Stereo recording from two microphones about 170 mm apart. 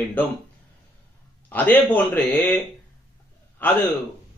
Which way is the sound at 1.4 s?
10° left (ahead or behind).